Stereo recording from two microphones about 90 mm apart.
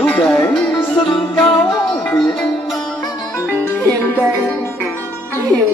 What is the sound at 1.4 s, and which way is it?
Music, 70° left (ahead or behind).